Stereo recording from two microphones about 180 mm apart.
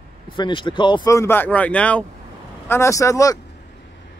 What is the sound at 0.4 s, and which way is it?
A man's voice, 25° left (ahead or behind).